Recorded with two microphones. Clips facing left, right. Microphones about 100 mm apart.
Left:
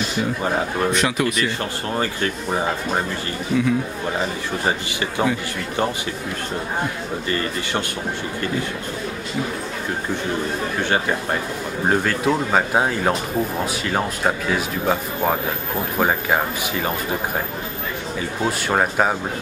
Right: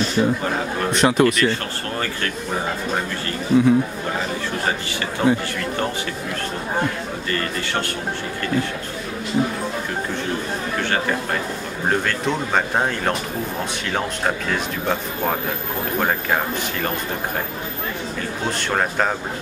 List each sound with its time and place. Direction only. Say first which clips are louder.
0.9 s speech: right 4 dB; 30° right (ahead or behind)
3.5 s speech: right 4 dB; 35° right (ahead or behind)
5.2 s speech: right 3 dB; 20° left (ahead or behind)
11.9 s speech: left 2 dB; 5° left (ahead or behind)
14.5 s speech: left 2 dB; 5° left (ahead or behind)
18.6 s speech: left 2 dB; 10° left (ahead or behind)